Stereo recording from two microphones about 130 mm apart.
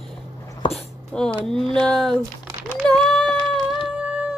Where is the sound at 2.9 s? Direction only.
Centre (ahead or behind).